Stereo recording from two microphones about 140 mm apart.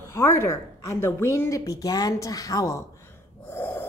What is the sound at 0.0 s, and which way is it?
A woman's voice, 20° left (ahead or behind).